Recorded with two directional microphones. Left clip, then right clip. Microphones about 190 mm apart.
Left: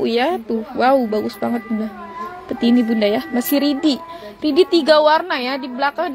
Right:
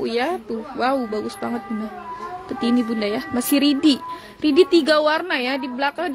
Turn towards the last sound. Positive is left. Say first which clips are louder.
# left 3 dB
turn(degrees=-20)  # may be behind; listen again after turning